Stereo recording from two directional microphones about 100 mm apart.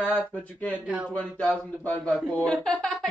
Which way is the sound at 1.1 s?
15° left (ahead or behind).